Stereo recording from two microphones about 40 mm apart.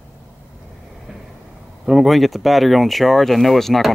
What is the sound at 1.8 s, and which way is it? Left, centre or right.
Speech, centre.